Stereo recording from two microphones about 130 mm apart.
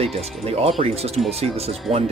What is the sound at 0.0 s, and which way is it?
Speech, 50° right (ahead or behind).